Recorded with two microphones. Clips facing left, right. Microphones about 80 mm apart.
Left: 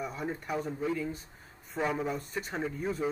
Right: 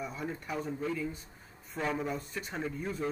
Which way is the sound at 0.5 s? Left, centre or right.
Centre.